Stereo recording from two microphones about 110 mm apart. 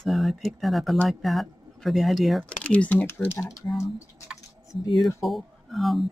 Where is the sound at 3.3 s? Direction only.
30° left (ahead or behind).